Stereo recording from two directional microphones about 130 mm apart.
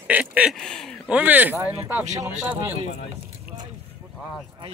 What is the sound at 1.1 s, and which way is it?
Speech, 10° right (ahead or behind).